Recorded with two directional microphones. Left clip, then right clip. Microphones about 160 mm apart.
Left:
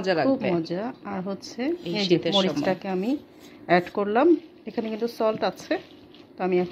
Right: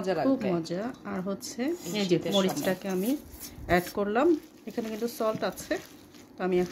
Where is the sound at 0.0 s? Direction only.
45° left (ahead or behind).